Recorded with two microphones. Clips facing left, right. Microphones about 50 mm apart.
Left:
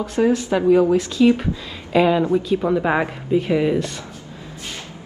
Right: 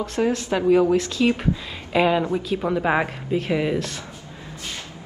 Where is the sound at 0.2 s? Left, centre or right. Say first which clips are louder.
Left 4 dB; centre.